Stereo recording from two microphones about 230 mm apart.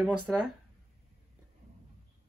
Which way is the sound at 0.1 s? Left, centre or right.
Right.